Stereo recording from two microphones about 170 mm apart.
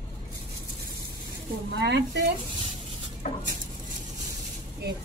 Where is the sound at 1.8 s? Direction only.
85° right.